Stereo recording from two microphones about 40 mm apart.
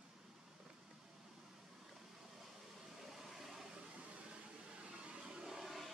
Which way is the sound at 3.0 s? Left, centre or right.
Centre.